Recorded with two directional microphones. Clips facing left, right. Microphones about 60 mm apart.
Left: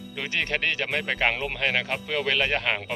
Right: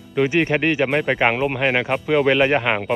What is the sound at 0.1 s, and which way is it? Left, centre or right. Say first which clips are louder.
Speech: right 11 dB; centre.